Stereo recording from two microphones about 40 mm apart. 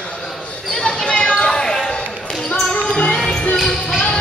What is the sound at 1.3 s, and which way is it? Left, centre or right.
Basketball bounce, centre.